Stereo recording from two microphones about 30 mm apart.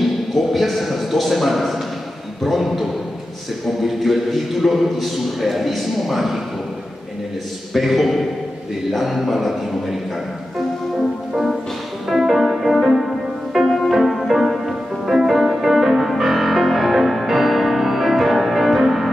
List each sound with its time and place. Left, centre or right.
0.3 s a sound: centre
2.6 s a man's voice: centre
7.7 s a man's voice: centre
12.1 s music: centre